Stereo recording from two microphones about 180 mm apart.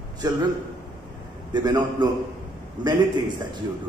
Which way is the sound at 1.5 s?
20° right (ahead or behind).